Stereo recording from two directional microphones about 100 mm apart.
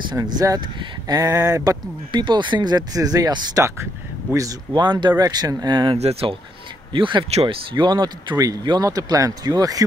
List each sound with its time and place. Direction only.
0.1 s speech: 35° right (ahead or behind)
4.7 s speech: 50° right (ahead or behind)
5.9 s speech: 85° right
6.9 s speech: 55° right (ahead or behind)